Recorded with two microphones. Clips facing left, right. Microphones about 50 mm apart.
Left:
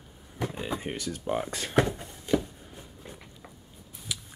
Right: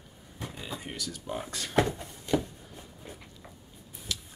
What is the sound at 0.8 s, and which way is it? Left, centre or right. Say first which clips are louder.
Speech: left 5 dB; left.